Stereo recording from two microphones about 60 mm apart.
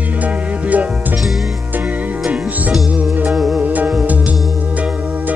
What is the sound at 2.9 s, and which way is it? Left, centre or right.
Music, right.